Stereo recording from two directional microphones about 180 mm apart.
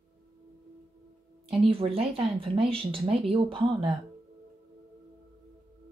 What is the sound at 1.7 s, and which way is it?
Speech, 30° right (ahead or behind).